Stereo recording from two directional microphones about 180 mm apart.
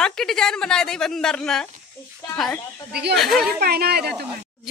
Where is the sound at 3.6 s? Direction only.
60° right (ahead or behind).